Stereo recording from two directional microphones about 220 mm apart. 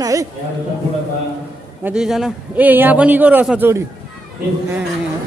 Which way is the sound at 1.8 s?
Centre (ahead or behind).